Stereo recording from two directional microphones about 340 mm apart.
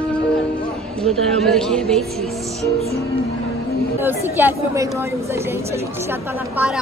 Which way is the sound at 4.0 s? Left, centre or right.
Centre.